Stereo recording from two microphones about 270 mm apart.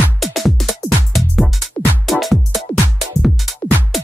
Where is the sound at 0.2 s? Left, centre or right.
Centre.